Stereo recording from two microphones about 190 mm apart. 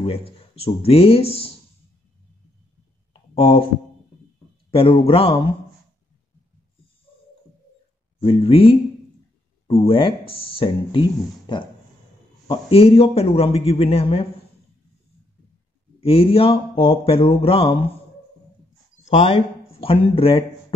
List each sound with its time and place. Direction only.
0.0 s a man's voice: 30° left (ahead or behind)
3.1 s a sound: 30° left (ahead or behind)
4.6 s speech: 30° left (ahead or behind)
8.2 s speech: 25° left (ahead or behind)
9.8 s a man's voice: 30° left (ahead or behind)
16.0 s speech: 30° left (ahead or behind)
19.0 s speech: 30° left (ahead or behind)